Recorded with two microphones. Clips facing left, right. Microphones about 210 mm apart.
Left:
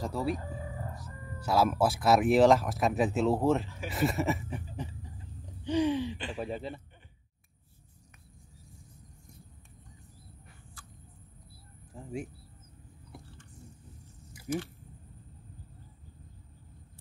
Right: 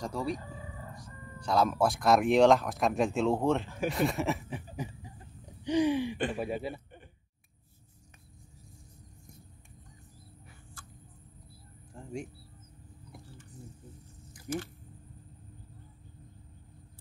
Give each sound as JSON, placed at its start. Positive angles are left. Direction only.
{"t": 0.0, "sound": "speech", "side_deg": 5}
{"t": 1.4, "sound": "speech", "side_deg": 5}
{"t": 3.6, "sound": "speech", "side_deg": -50}
{"t": 3.9, "sound": "speech", "side_deg": 0}
{"t": 5.6, "sound": "a sound", "side_deg": -15}
{"t": 6.3, "sound": "speech", "side_deg": -10}
{"t": 11.9, "sound": "a sound", "side_deg": 5}
{"t": 14.5, "sound": "speech", "side_deg": 5}